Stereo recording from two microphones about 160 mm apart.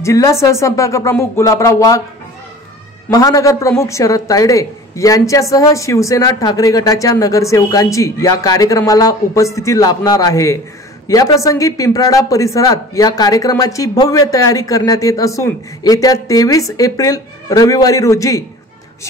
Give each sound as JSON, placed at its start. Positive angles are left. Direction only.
{"t": 0.0, "sound": "a woman's voice", "side_deg": 20}
{"t": 3.1, "sound": "a woman's voice", "side_deg": 20}